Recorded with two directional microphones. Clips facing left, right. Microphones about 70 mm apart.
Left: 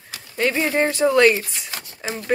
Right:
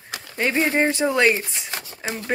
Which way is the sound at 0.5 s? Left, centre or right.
Centre.